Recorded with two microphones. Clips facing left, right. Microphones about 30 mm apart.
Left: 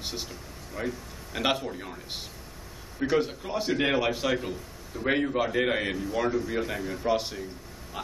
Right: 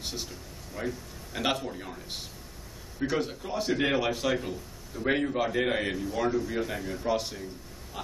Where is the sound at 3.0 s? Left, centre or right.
Centre.